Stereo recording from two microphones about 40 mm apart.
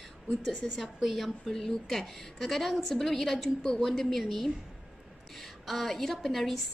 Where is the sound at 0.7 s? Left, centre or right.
Centre.